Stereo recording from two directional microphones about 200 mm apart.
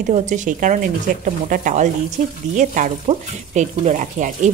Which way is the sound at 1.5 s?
40° right (ahead or behind).